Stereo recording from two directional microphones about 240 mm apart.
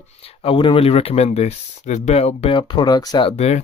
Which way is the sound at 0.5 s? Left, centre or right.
Left.